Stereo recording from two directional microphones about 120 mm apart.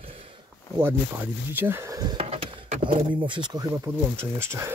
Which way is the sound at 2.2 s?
55° right (ahead or behind).